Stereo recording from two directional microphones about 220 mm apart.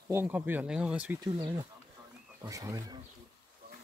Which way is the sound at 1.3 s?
20° right (ahead or behind).